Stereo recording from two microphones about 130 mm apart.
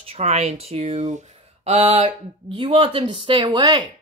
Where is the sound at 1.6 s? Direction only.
50° right (ahead or behind).